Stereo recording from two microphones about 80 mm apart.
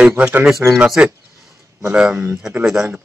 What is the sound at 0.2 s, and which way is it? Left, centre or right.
Speech, right.